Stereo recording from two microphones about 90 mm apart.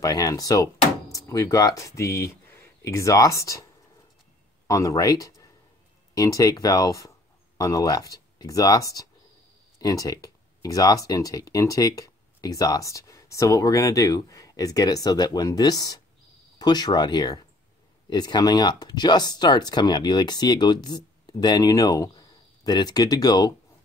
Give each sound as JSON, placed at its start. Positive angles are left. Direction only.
{"t": 0.0, "sound": "speech", "side_deg": 40}
{"t": 4.6, "sound": "speech", "side_deg": 40}